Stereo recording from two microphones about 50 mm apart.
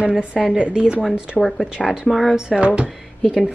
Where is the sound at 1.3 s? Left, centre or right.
Left.